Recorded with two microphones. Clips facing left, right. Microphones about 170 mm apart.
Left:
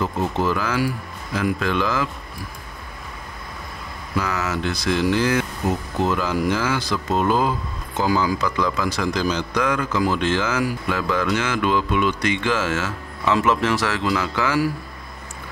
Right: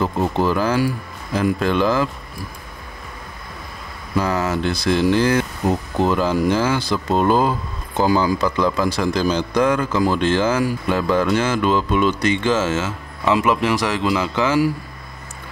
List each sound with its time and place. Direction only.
0.0 s speech: 30° right (ahead or behind)
4.2 s a man's voice: 30° right (ahead or behind)